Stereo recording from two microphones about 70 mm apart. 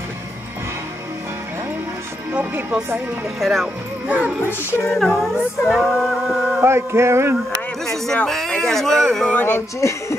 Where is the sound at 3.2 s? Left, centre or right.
Centre.